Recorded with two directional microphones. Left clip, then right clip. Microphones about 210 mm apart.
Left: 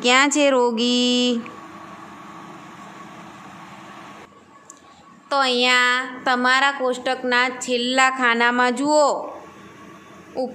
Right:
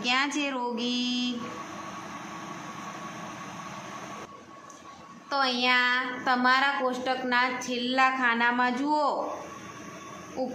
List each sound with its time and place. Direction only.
0.0 s speech: 55° left (ahead or behind)
5.3 s a woman's voice: 50° left (ahead or behind)
10.4 s a woman's voice: 50° left (ahead or behind)